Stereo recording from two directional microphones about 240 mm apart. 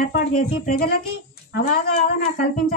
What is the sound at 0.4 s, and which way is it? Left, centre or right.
Speech, left.